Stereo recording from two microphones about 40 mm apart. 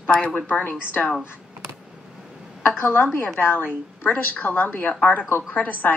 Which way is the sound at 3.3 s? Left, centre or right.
Left.